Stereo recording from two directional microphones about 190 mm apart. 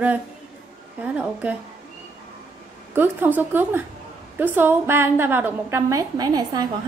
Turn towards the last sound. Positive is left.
turn(degrees=-20)  # may be behind; listen again after turning